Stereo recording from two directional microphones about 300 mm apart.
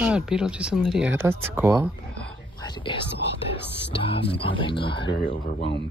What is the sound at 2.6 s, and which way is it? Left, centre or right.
Speech, centre.